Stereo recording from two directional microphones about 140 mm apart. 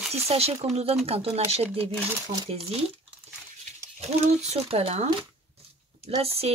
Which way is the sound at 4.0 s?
50° right (ahead or behind).